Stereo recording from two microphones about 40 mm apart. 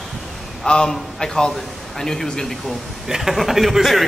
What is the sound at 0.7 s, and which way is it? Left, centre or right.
Speech, left.